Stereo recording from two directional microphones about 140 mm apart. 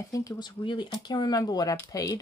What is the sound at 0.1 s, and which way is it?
Speech, 25° left (ahead or behind).